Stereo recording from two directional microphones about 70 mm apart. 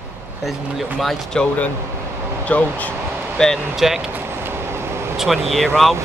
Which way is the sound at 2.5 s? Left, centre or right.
Centre.